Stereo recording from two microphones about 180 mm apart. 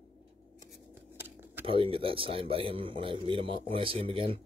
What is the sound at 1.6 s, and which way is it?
A man's voice, 30° right (ahead or behind).